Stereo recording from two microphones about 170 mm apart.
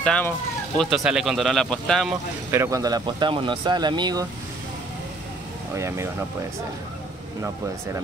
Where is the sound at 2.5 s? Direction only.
20° right (ahead or behind).